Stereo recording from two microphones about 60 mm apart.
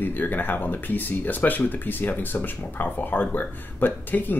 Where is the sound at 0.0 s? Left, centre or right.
Left.